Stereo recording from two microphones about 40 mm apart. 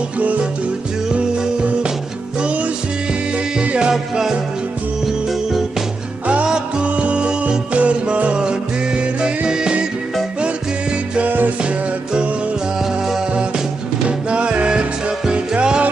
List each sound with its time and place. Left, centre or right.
1.4 s music: right
3.9 s music: centre
6.4 s music: right
11.2 s music: right
14.0 s music: right